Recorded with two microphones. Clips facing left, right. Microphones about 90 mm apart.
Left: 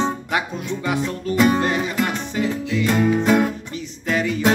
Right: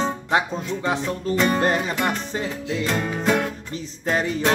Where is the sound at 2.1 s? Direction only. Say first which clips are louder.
Left 3 dB; 35° right (ahead or behind).